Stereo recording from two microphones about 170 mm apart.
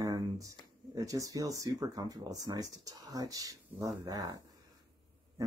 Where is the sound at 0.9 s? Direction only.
20° right (ahead or behind).